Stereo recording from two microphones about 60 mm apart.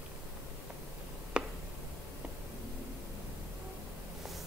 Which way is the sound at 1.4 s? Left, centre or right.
Centre.